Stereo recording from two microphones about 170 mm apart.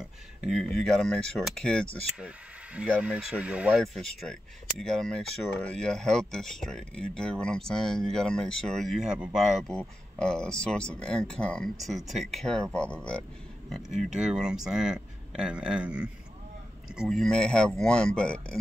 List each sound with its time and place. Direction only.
0.4 s speech: centre (ahead or behind)
2.1 s speech: 5° right (ahead or behind)
13.7 s speech: centre (ahead or behind)